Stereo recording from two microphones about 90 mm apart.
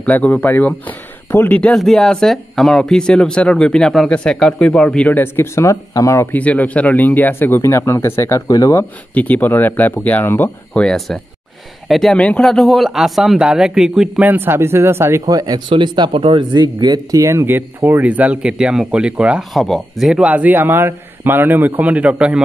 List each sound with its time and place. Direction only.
0.0 s speech: 15° left (ahead or behind)
1.8 s speech: 5° left (ahead or behind); by 6.2 s 35° left (ahead or behind)
6.3 s speech: 15° left (ahead or behind); by 8.7 s 40° left (ahead or behind)
8.7 s speech: 20° left (ahead or behind)
10.7 s speech: 10° left (ahead or behind)
12.2 s speech: 15° left (ahead or behind)
12.4 s speech: 5° left (ahead or behind)
14.2 s speech: 20° right (ahead or behind); by 16.6 s 70° right (ahead or behind)
16.6 s speech: 45° right (ahead or behind); by 19.4 s 15° right (ahead or behind)
19.5 s speech: centre (ahead or behind)
20.2 s a man's voice: 15° right (ahead or behind)